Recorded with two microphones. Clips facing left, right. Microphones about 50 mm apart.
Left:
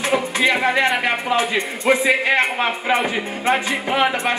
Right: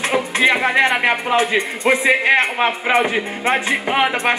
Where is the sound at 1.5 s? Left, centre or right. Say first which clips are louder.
Right 1 dB; centre.